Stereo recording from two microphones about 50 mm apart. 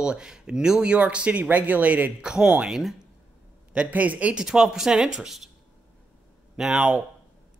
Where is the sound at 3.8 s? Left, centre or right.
Right.